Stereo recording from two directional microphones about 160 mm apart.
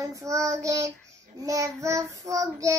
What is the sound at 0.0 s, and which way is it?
Child singing, 20° right (ahead or behind).